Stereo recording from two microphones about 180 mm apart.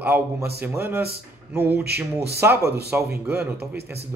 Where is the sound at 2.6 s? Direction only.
65° right (ahead or behind).